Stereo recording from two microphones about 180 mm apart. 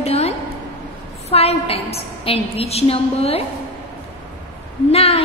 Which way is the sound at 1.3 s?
35° left (ahead or behind).